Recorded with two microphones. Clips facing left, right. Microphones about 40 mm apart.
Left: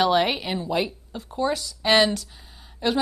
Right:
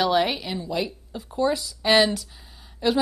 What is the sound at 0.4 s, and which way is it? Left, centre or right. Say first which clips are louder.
Speech: left 2 dB; left.